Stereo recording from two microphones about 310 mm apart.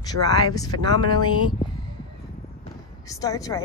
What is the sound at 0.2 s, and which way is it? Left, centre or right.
Speech, right.